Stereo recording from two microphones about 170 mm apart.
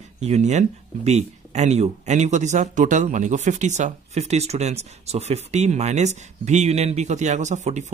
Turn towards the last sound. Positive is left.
turn(degrees=-45)  # may be behind; listen again after turning